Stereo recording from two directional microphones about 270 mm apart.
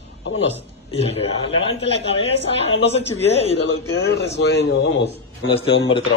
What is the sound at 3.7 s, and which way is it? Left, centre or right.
Speech, left.